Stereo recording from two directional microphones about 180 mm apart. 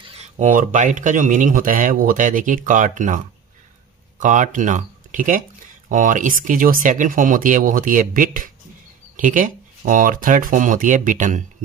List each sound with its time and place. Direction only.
0.0 s speech: 35° right (ahead or behind)
4.2 s speech: 45° right (ahead or behind)